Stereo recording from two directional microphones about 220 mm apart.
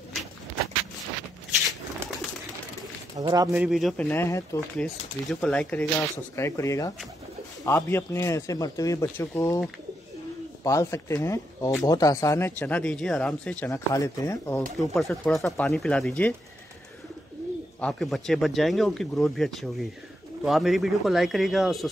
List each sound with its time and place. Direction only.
3.2 s speech: 15° right (ahead or behind)
3.6 s speech: centre (ahead or behind)
10.6 s speech: 15° left (ahead or behind)
14.8 s speech: centre (ahead or behind)
17.7 s speech: 5° left (ahead or behind)